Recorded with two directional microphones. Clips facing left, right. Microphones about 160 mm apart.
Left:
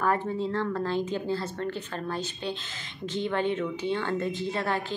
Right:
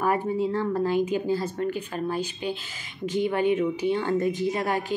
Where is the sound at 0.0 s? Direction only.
10° right (ahead or behind).